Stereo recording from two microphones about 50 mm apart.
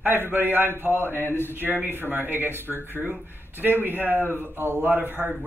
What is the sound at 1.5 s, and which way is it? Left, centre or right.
Speech, right.